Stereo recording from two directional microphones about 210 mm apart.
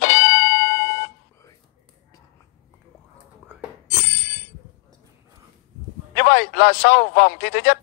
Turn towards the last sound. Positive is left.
turn(degrees=50)  # may be behind; listen again after turning